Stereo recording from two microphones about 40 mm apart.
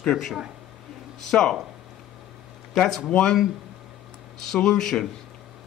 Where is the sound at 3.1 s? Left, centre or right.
Centre.